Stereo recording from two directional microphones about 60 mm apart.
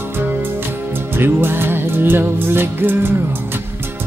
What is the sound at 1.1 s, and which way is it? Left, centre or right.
Music, right.